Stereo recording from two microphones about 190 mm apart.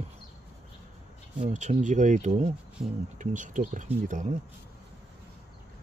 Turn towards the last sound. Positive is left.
turn(degrees=-40)  # may be behind; listen again after turning